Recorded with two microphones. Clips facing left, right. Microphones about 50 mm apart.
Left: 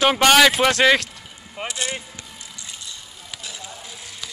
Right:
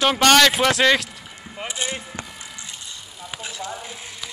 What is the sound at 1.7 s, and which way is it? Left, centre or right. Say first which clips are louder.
Speech: even; centre.